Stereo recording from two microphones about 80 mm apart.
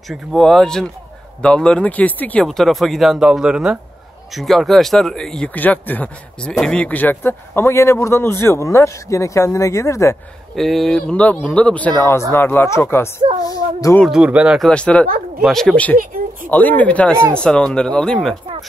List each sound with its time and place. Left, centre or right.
0.1 s speech: centre
0.5 s speech: centre
2.4 s speech: centre
4.4 s speech: centre
5.5 s speech: left
6.4 s a man's voice: centre; by 10.1 s left
10.5 s speech: centre
12.0 s a man's voice: left
13.4 s speech: left
14.2 s speech: centre
14.6 s speech: centre
16.4 s speech: left